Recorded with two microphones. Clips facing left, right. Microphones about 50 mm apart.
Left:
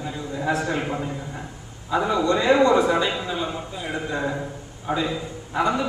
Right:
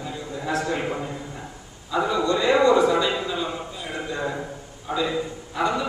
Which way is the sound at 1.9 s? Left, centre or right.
Centre.